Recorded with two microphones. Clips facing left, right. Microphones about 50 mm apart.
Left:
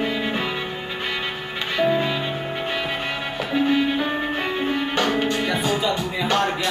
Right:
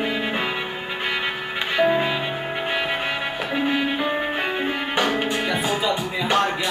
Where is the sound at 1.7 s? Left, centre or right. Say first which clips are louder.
Right 1 dB; centre.